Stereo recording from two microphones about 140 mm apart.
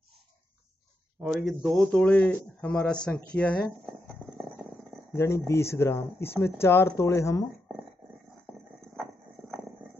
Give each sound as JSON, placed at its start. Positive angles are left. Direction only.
{"t": 1.2, "sound": "speech", "side_deg": 0}
{"t": 5.1, "sound": "speech", "side_deg": 20}